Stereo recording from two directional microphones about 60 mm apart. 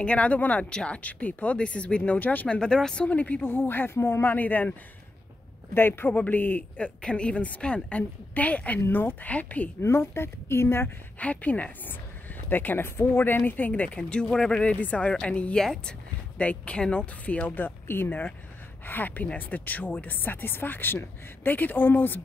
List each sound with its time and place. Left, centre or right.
0.0 s speech: left
2.4 s speech: centre
3.1 s speech: left
5.8 s speech: left
6.8 s speech: centre
9.8 s a woman's voice: left
11.1 s speech: left
13.5 s speech: left
15.6 s speech: centre
16.3 s speech: centre
17.6 s speech: left